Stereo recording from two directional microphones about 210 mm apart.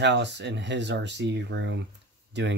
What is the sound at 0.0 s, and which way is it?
Speech, 55° right (ahead or behind).